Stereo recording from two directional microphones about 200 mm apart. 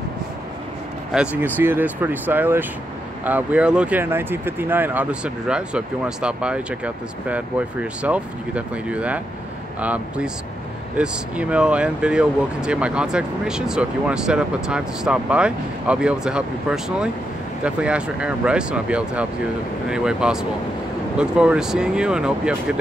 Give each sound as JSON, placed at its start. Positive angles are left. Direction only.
{"t": 1.1, "sound": "speech", "side_deg": -5}